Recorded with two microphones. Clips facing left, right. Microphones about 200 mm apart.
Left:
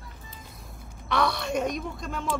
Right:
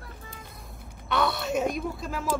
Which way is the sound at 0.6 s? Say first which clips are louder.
Even; centre (ahead or behind).